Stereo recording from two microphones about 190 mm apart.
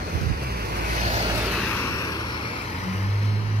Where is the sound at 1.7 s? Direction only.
15° left (ahead or behind).